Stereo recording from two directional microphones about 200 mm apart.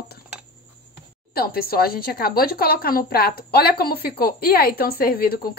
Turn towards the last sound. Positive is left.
turn(degrees=50)  # may be behind; listen again after turning